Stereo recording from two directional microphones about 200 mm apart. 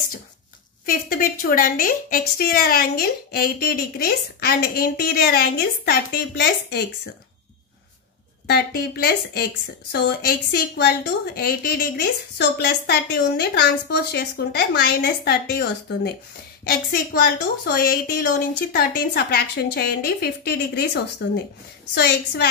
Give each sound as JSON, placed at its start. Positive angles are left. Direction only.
{"t": 0.8, "sound": "a woman's voice", "side_deg": 45}
{"t": 8.5, "sound": "a woman's voice", "side_deg": 55}